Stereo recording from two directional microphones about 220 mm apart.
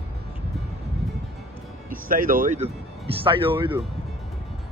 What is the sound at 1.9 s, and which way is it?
Speech, 40° right (ahead or behind).